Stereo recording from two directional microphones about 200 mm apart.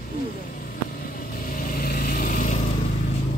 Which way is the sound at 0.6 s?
45° left (ahead or behind).